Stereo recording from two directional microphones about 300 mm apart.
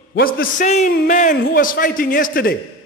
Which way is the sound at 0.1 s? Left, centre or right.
Left.